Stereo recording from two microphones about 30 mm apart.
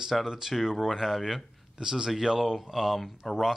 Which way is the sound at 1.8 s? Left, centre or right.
Right.